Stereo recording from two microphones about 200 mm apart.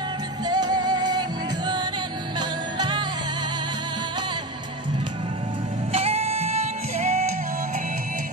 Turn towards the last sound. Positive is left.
turn(degrees=-35)  # may be behind; listen again after turning